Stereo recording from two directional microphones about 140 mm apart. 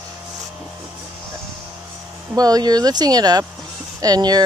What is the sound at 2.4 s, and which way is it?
Speech, 25° right (ahead or behind).